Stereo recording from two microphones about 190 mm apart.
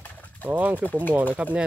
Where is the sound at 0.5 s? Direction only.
10° right (ahead or behind).